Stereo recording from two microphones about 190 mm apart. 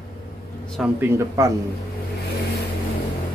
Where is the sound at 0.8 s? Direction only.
10° right (ahead or behind).